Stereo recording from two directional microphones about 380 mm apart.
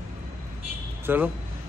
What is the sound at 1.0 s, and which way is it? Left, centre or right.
Speech, centre.